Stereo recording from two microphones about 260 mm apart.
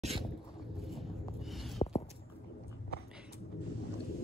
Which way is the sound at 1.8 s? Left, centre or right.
Centre.